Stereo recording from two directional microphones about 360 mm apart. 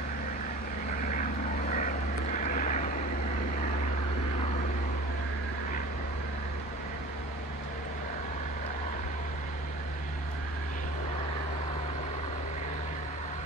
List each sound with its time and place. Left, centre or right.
2.3 s vehicle: left